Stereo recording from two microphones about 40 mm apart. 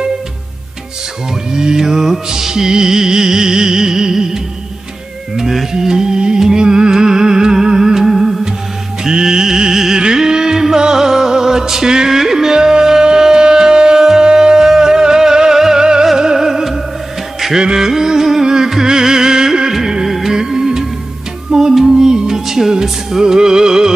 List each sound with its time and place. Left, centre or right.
1.5 s music: centre
20.3 s music: centre